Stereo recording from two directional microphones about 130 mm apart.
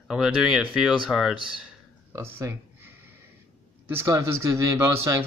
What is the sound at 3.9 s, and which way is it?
Speech, 20° right (ahead or behind).